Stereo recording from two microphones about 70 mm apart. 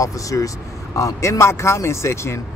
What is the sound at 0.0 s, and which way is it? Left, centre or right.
Speech, left.